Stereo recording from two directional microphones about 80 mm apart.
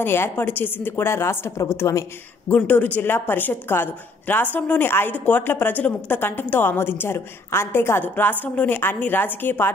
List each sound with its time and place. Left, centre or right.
0.0 s a woman's voice: left
2.4 s a woman's voice: left